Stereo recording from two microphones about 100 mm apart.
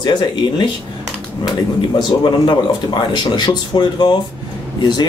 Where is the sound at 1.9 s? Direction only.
50° left (ahead or behind).